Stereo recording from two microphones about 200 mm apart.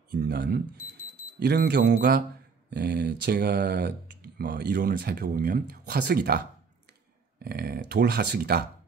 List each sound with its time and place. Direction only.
0.1 s speech: 50° right (ahead or behind)
2.7 s speech: 55° right (ahead or behind)